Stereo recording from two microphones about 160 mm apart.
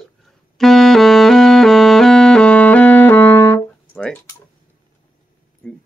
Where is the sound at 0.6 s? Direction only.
Centre (ahead or behind).